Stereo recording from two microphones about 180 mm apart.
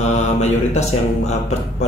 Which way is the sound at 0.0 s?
40° left (ahead or behind).